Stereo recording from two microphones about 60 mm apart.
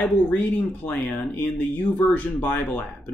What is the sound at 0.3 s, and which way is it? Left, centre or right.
Speech, left.